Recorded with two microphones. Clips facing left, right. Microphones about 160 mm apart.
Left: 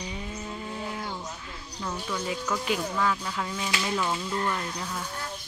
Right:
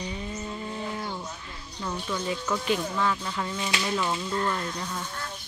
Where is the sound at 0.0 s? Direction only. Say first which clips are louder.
Right 2 dB; 10° left (ahead or behind).